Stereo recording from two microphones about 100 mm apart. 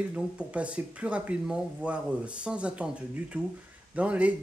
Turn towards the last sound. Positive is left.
turn(degrees=-15)  # may be behind; listen again after turning